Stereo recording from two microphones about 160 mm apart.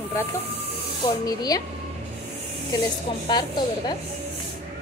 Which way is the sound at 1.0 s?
25° left (ahead or behind).